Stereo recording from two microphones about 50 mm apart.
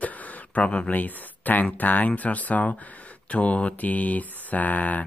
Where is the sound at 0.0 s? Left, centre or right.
Left.